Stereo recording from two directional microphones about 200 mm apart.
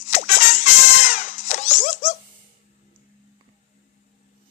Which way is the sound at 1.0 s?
40° left (ahead or behind).